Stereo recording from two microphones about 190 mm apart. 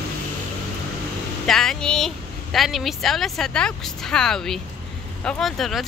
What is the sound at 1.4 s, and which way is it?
Speech, 5° left (ahead or behind).